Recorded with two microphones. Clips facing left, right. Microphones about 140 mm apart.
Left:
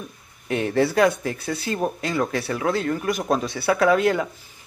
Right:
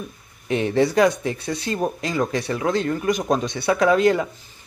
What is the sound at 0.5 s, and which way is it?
Speech, centre (ahead or behind).